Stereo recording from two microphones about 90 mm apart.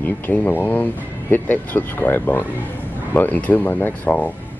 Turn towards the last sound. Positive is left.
turn(degrees=20)  # may be behind; listen again after turning